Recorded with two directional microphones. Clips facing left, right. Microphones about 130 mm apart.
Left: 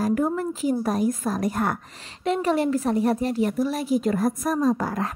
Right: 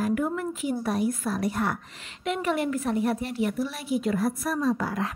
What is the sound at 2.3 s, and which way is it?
A woman's voice, 35° left (ahead or behind).